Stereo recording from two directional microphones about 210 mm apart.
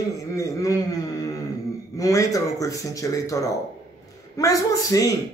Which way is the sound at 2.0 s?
15° left (ahead or behind).